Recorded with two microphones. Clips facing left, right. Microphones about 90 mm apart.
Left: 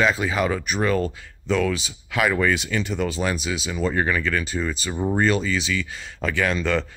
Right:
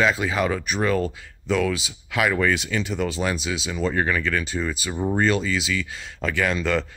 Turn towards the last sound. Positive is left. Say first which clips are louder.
# even
turn(degrees=0)  # may be behind; listen again after turning